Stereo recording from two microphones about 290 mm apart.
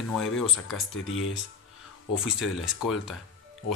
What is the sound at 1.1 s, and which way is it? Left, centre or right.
Speech, left.